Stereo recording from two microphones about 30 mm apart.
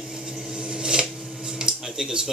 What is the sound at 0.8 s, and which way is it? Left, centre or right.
Filing, right.